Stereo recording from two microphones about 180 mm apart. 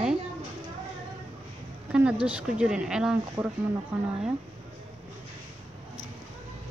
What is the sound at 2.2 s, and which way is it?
Speech, 5° right (ahead or behind).